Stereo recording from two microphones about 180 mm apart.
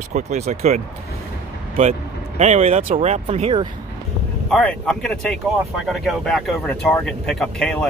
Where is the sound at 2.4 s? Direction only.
40° right (ahead or behind).